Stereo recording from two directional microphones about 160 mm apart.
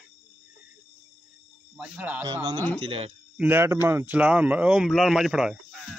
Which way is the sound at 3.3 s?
10° right (ahead or behind).